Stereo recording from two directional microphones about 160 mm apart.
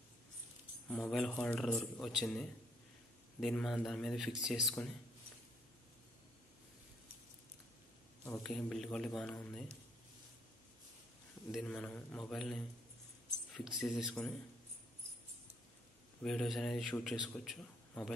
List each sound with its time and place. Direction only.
0.8 s a man's voice: 5° left (ahead or behind)
8.3 s a man's voice: 5° left (ahead or behind)
11.6 s a man's voice: 5° left (ahead or behind)
16.2 s a man's voice: centre (ahead or behind)